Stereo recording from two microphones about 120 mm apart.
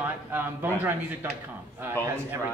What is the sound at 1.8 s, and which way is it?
Speech, 20° right (ahead or behind).